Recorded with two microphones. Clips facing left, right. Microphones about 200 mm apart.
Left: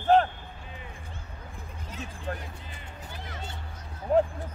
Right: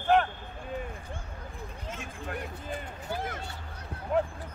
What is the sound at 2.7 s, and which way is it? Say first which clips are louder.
Speech: right 8 dB; 50° right (ahead or behind).